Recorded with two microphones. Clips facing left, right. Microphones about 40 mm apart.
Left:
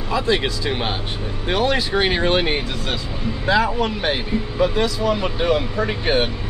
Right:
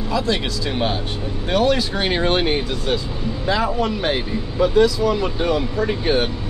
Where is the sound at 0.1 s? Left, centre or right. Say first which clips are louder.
Left 2 dB; centre.